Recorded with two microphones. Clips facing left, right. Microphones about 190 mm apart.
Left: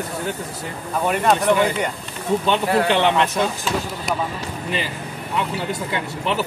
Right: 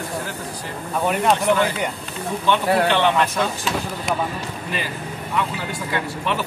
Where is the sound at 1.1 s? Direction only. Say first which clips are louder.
Left 1 dB; centre (ahead or behind).